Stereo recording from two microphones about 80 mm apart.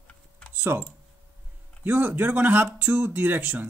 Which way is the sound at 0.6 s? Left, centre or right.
Right.